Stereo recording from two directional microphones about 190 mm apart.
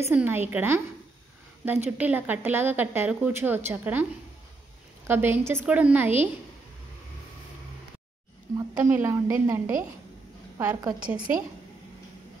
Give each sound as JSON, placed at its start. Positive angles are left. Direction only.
{"t": 0.1, "sound": "speech", "side_deg": -10}
{"t": 5.0, "sound": "speech", "side_deg": -10}
{"t": 8.5, "sound": "speech", "side_deg": -15}
{"t": 10.6, "sound": "a woman's voice", "side_deg": -15}
{"t": 11.1, "sound": "speech", "side_deg": -5}